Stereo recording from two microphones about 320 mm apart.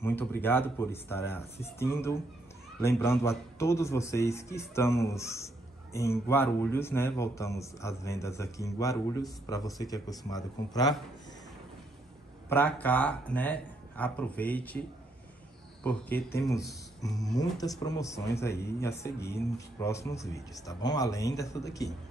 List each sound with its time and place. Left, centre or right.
0.0 s a man's voice: centre
12.4 s speech: centre
15.8 s a man's voice: centre